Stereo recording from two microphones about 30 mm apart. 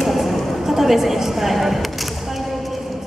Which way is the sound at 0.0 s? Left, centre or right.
Centre.